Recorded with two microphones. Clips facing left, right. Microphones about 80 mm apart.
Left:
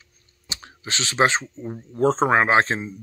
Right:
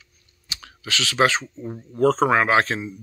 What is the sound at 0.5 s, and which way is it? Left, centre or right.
Clicking, left.